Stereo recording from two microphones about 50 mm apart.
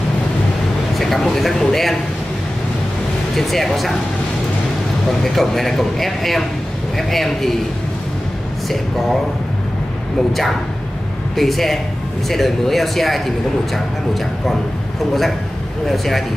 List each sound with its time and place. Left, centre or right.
0.9 s speech: centre
3.3 s speech: centre
5.2 s speech: centre
11.3 s speech: centre
15.9 s speech: centre